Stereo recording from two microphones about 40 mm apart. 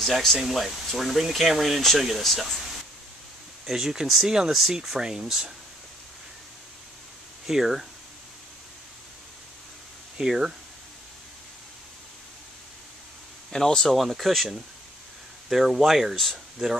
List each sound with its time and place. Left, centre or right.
0.0 s speech: centre
0.4 s speech: centre
3.6 s speech: centre
4.5 s speech: centre
7.4 s speech: centre
10.1 s speech: centre
13.5 s speech: centre
15.5 s speech: centre